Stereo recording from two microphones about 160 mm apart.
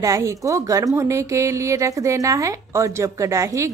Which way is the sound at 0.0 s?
20° right (ahead or behind).